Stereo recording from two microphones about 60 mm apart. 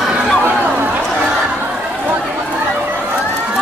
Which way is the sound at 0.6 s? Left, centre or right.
Right.